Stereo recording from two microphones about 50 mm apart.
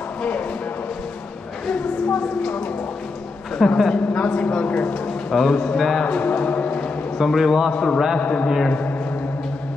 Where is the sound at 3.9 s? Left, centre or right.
Left.